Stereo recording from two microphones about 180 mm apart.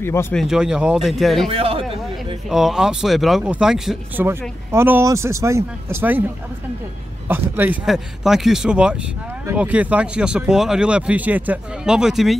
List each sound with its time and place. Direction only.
0.0 s speech: 15° left (ahead or behind)
0.4 s speech: 5° right (ahead or behind)
1.5 s speech: 30° right (ahead or behind)
2.5 s speech: centre (ahead or behind)
7.2 s speech: 10° right (ahead or behind)